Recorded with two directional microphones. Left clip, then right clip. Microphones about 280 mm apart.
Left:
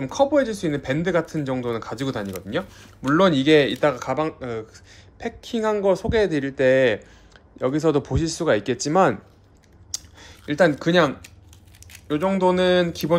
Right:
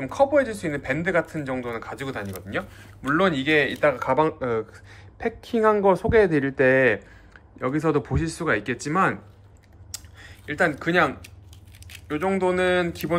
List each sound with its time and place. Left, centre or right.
0.0 s speech: centre
9.8 s a sound: centre
11.9 s speech: centre